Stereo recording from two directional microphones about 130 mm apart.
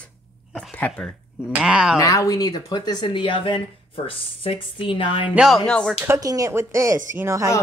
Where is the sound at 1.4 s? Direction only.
5° right (ahead or behind).